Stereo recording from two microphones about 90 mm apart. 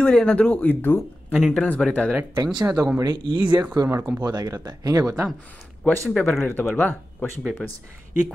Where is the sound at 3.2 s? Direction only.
65° right (ahead or behind).